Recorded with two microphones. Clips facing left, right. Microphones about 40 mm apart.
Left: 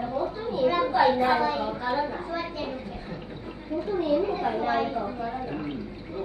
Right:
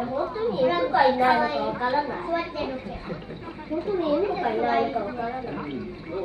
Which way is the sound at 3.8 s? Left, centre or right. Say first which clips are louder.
Right 1 dB; right.